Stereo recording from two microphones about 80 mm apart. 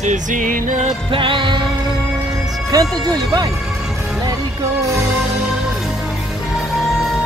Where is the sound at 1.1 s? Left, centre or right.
Right.